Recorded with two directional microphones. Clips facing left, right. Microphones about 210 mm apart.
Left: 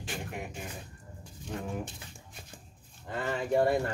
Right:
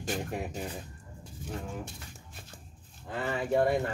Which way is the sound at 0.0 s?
40° right (ahead or behind).